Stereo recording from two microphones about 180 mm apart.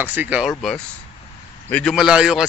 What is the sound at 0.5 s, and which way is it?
A man's voice, centre (ahead or behind).